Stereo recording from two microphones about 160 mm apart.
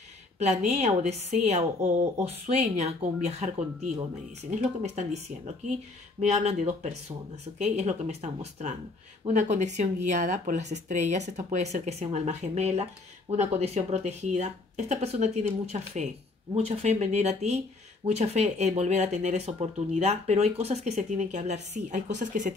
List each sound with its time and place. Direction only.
0.4 s speech: 45° right (ahead or behind)
6.3 s speech: 45° right (ahead or behind)